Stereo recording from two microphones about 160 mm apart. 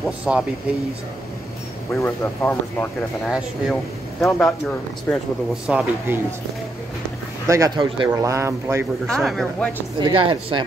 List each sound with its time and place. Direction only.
0.0 s a man's voice: 5° right (ahead or behind)
2.0 s speech: 15° left (ahead or behind)
3.3 s speech: 5° right (ahead or behind)
5.7 s a man's voice: 10° right (ahead or behind)
7.4 s speech: 20° right (ahead or behind)
9.0 s speech: centre (ahead or behind)
9.9 s speech: 30° right (ahead or behind)